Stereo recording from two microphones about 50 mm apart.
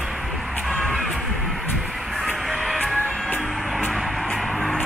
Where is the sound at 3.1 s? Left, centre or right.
Left.